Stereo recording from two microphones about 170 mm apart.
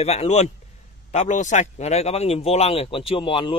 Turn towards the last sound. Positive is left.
turn(degrees=30)  # may be behind; listen again after turning